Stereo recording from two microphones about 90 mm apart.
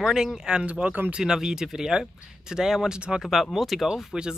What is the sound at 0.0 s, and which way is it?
Speech, 5° right (ahead or behind).